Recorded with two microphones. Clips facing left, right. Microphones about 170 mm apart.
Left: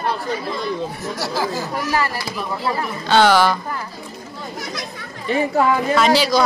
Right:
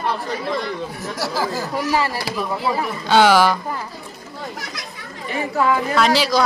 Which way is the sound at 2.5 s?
10° right (ahead or behind).